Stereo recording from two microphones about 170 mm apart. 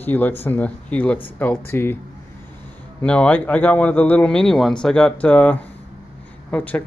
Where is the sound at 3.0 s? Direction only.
5° left (ahead or behind).